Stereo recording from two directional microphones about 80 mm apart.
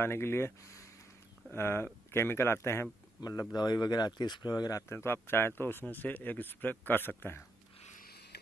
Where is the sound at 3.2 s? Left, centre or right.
Left.